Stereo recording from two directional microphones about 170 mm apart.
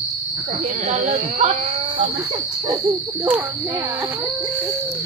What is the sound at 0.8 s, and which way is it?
Speech, 45° right (ahead or behind).